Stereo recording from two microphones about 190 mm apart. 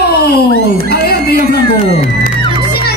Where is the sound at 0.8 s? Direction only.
55° left (ahead or behind).